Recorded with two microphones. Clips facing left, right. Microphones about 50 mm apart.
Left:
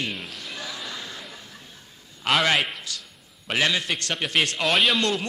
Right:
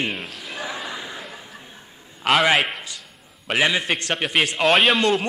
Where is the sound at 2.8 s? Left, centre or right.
Right.